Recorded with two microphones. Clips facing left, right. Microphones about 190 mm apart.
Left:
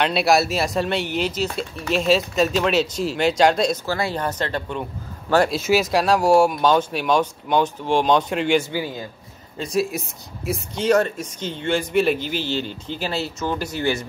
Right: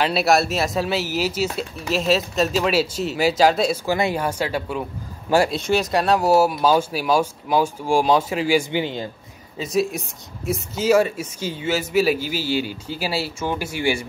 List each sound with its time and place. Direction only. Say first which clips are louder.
0.0 s speech: even; centre (ahead or behind)
3.8 s speech: right 3 dB; 15° right (ahead or behind)
5.6 s speech: left 1 dB; 5° left (ahead or behind)
8.6 s a man's voice: right 3 dB; 25° right (ahead or behind)
9.6 s speech: right 1 dB; centre (ahead or behind)